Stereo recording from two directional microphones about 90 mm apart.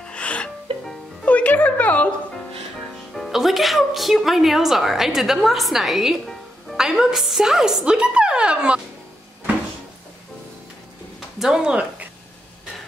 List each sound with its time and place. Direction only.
0.0 s music: 15° left (ahead or behind)
3.2 s a woman's voice: centre (ahead or behind)
11.1 s a sound: 5° right (ahead or behind)